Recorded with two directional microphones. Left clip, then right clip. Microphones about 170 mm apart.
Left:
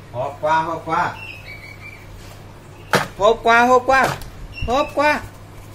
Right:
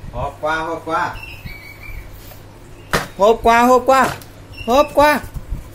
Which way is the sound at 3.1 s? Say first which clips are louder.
Right 3 dB; 40° right (ahead or behind).